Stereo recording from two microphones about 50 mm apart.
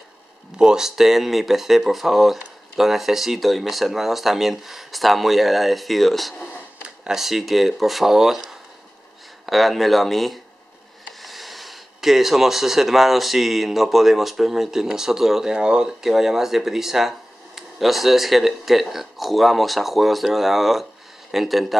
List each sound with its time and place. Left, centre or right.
0.6 s speech: centre
9.5 s speech: centre
16.0 s speech: centre